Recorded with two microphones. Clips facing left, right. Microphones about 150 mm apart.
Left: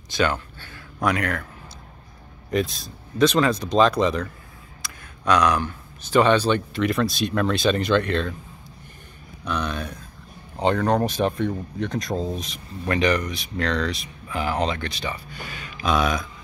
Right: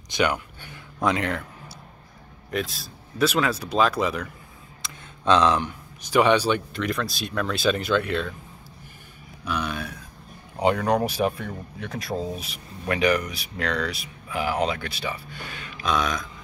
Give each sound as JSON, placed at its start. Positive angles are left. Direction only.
{"t": 0.1, "sound": "a sound", "side_deg": -15}
{"t": 1.0, "sound": "speech", "side_deg": -20}
{"t": 2.5, "sound": "speech", "side_deg": 0}
{"t": 4.8, "sound": "speech", "side_deg": -25}
{"t": 6.7, "sound": "speech", "side_deg": 0}
{"t": 9.4, "sound": "speech", "side_deg": -5}